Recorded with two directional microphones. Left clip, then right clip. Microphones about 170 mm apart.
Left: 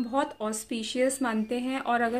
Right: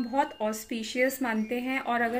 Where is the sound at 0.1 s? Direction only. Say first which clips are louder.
Right 2 dB; 20° left (ahead or behind).